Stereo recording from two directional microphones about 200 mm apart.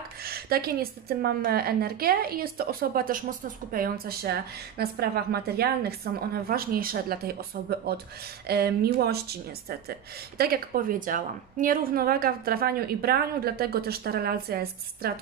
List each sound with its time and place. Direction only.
0.2 s a woman's voice: 50° right (ahead or behind)